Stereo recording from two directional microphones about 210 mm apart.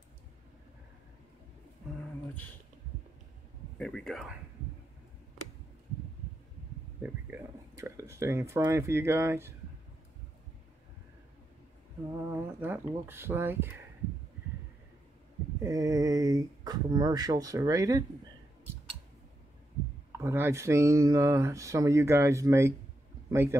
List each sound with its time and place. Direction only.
3.7 s speech: 5° left (ahead or behind)
7.0 s speech: 10° right (ahead or behind)
12.2 s speech: 10° right (ahead or behind)
15.6 s speech: 15° right (ahead or behind)
20.2 s speech: 10° right (ahead or behind)